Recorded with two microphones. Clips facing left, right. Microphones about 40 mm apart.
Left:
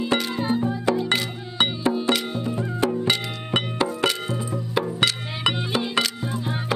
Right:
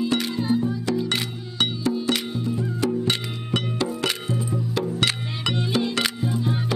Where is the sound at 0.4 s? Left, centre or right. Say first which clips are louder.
Even; left.